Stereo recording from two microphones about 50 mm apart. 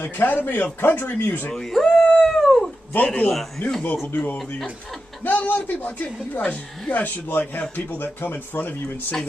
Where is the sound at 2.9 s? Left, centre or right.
Left.